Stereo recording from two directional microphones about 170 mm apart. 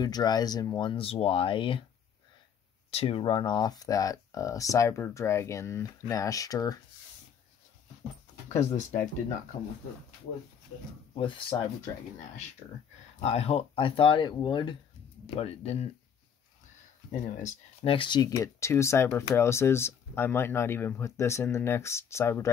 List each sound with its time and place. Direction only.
0.0 s speech: 25° left (ahead or behind)
2.9 s speech: 35° left (ahead or behind)
8.5 s speech: 45° left (ahead or behind)
11.1 s speech: 30° left (ahead or behind)
13.2 s speech: 35° left (ahead or behind)
17.4 s speech: 45° left (ahead or behind)
17.9 s speech: 25° left (ahead or behind)
18.3 s speech: 15° left (ahead or behind)